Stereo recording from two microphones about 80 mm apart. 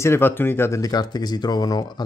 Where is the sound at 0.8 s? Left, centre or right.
Left.